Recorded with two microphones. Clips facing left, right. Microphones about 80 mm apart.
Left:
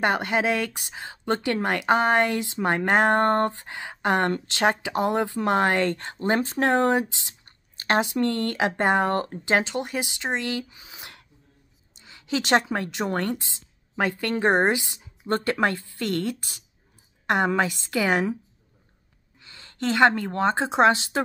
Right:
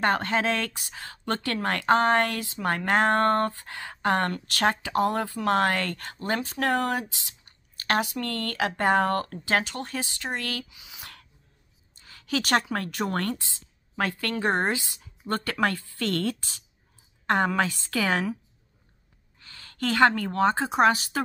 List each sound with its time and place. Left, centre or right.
0.0 s a woman's voice: centre
10.7 s speech: left
11.9 s a woman's voice: left
19.4 s a woman's voice: left